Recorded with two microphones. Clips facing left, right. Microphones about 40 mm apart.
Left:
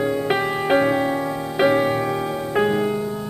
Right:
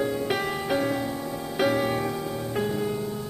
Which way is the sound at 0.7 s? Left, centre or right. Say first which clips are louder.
Left 9 dB; left.